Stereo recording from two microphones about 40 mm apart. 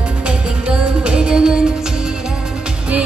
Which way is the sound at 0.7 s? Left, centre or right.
Right.